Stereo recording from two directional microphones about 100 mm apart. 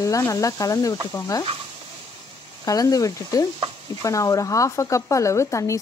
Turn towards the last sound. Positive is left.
turn(degrees=30)  # may be behind; listen again after turning